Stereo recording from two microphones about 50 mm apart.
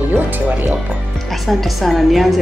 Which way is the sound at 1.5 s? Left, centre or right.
Centre.